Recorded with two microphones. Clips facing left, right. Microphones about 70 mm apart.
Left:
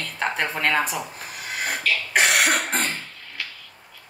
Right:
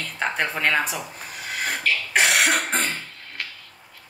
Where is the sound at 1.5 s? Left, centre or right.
Centre.